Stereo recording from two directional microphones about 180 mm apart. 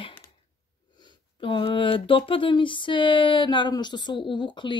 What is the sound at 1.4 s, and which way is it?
Speech, 30° left (ahead or behind).